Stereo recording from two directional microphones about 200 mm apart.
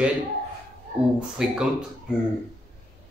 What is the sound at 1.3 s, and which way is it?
Speech, 5° right (ahead or behind).